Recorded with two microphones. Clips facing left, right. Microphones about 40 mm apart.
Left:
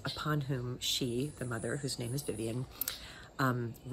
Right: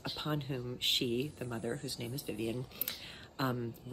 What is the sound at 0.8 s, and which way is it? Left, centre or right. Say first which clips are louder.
Speech: right 3 dB; right.